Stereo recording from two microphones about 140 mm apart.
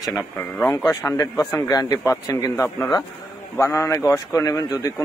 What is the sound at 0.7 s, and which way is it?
A man's voice, 20° left (ahead or behind).